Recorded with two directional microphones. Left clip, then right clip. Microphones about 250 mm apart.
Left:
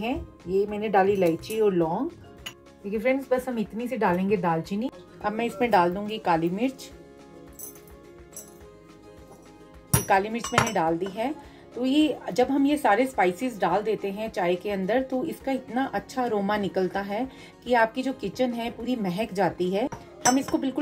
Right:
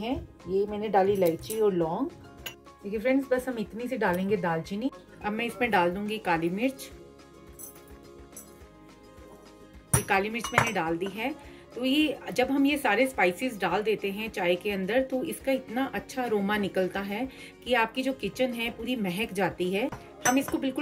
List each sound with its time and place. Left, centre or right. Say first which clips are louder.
0.0 s a woman's voice: left 3 dB; centre
5.2 s a woman's voice: left 3 dB; centre
10.0 s a woman's voice: left 4 dB; centre